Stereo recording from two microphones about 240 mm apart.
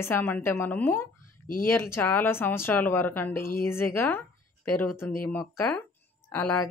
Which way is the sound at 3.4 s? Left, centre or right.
Left.